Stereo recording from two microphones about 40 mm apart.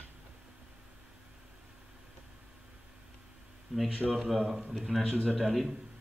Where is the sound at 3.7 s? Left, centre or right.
Centre.